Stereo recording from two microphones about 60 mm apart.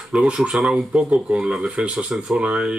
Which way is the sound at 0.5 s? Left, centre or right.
Centre.